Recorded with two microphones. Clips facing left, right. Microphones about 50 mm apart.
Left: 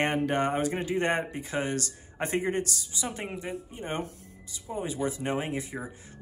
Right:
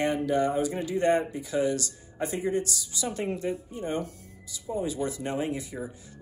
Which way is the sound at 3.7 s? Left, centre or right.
Left.